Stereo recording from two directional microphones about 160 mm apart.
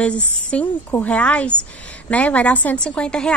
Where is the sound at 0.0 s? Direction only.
5° left (ahead or behind).